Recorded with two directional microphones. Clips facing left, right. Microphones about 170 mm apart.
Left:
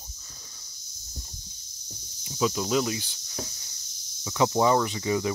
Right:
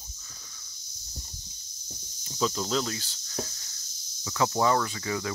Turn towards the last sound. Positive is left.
turn(degrees=20)  # may be behind; listen again after turning